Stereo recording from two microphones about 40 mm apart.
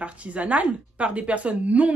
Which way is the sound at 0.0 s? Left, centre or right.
Right.